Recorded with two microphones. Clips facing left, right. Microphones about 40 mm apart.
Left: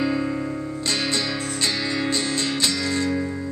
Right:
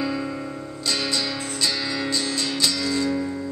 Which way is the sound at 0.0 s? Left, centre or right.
Centre.